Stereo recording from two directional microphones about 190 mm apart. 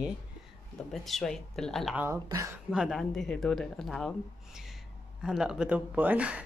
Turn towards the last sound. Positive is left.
turn(degrees=-5)  # may be behind; listen again after turning